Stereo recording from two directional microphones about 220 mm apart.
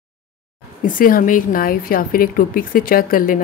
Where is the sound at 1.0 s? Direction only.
40° left (ahead or behind).